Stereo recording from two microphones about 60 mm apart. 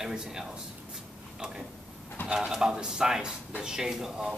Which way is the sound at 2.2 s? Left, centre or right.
Centre.